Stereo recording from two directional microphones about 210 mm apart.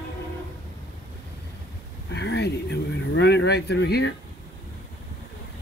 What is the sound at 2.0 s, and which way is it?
Speech, 55° left (ahead or behind).